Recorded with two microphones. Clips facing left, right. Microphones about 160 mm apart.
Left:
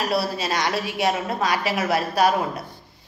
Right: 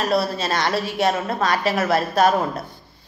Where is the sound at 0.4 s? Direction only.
15° left (ahead or behind).